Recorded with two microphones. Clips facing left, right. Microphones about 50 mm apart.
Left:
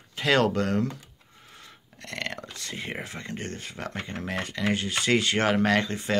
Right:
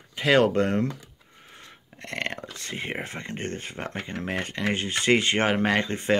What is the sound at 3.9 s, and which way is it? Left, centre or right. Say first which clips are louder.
Speech: right 1 dB; centre.